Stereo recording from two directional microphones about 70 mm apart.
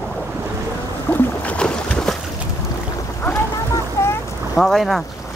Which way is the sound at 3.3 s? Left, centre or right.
Left.